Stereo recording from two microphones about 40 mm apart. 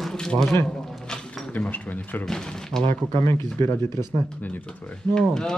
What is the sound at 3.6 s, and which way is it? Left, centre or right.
Speech, left.